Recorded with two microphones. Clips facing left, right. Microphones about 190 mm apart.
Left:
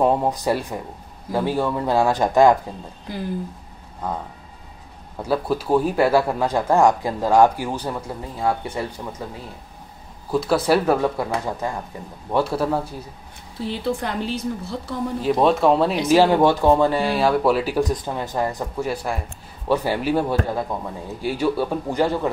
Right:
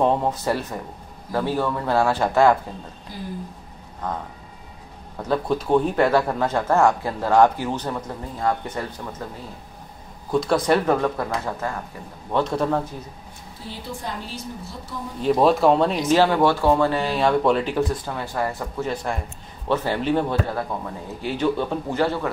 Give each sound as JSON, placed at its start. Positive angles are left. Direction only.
{"t": 0.0, "sound": "speech", "side_deg": 10}
{"t": 4.0, "sound": "speech", "side_deg": 10}
{"t": 10.3, "sound": "speech", "side_deg": 5}
{"t": 13.7, "sound": "a woman's voice", "side_deg": 75}
{"t": 15.2, "sound": "speech", "side_deg": 0}
{"t": 16.1, "sound": "speech", "side_deg": 15}